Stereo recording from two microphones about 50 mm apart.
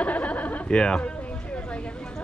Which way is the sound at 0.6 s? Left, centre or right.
Centre.